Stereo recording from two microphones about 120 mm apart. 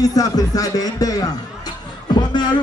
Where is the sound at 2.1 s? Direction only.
35° left (ahead or behind).